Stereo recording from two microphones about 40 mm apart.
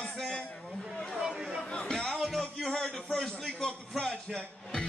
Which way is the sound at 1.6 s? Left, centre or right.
Left.